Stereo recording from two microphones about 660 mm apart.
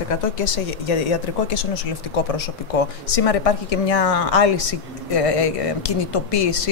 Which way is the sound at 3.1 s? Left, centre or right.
Left.